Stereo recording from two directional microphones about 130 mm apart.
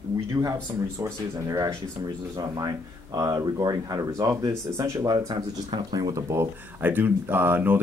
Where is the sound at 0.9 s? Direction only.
25° right (ahead or behind).